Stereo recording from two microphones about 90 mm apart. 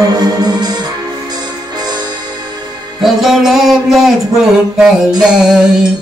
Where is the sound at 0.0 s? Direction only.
50° right (ahead or behind).